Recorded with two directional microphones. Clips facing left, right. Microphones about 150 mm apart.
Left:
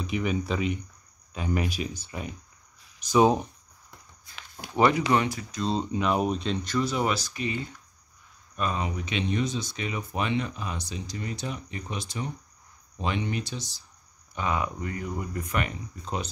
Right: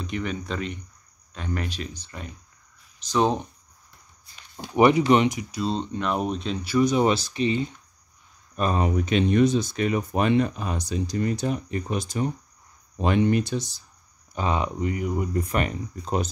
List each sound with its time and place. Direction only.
0.0 s speech: 5° left (ahead or behind)
4.7 s speech: 15° right (ahead or behind)
5.6 s speech: 5° left (ahead or behind); by 7.8 s 20° right (ahead or behind)
8.5 s speech: 45° right (ahead or behind)
14.3 s speech: 30° right (ahead or behind)
15.3 s speech: 35° right (ahead or behind)